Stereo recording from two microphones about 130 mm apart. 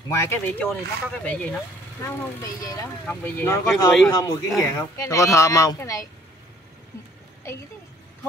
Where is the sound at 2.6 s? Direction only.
25° left (ahead or behind).